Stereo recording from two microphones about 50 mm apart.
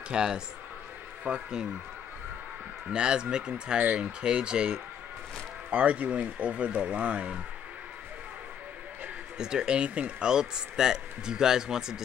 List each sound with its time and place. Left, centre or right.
0.1 s speech: centre
1.3 s speech: right
2.9 s speech: centre
9.4 s speech: centre
10.3 s speech: centre